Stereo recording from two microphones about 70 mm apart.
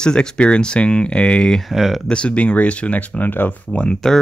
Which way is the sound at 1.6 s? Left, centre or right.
Centre.